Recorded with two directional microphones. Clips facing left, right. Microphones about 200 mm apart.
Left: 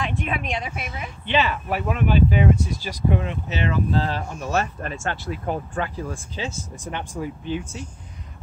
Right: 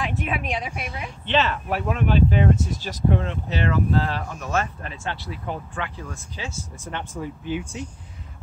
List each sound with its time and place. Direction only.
0.0 s speech: 5° right (ahead or behind); by 4.5 s 30° left (ahead or behind)
4.8 s speech: 45° left (ahead or behind); by 7.2 s 15° left (ahead or behind)
7.4 s speech: 15° right (ahead or behind)